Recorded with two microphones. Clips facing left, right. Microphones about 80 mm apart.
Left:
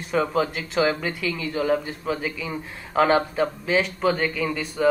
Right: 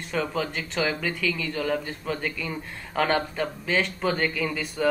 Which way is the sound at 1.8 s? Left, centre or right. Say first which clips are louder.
Left 3 dB; centre.